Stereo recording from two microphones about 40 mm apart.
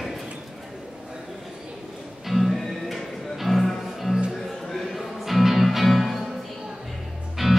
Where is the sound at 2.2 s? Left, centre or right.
Centre.